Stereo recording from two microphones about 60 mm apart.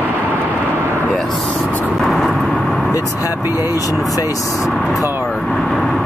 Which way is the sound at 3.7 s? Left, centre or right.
Left.